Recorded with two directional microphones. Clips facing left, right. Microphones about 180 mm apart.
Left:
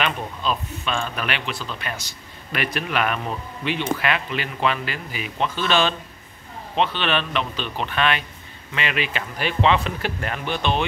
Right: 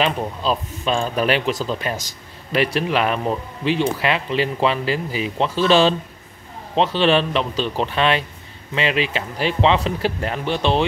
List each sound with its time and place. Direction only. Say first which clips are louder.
0.0 s speech: right 4 dB; 35° right (ahead or behind)